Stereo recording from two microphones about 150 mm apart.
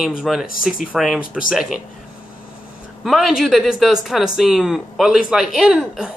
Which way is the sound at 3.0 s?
Centre (ahead or behind).